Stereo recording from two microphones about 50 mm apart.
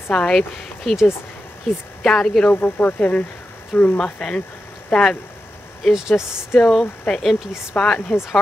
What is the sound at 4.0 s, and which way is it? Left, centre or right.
Speech, centre.